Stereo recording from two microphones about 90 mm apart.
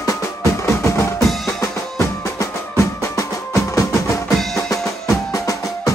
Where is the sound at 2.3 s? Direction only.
35° left (ahead or behind).